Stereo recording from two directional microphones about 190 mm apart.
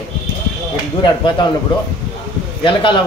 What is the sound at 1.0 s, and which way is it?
Speech, 25° left (ahead or behind).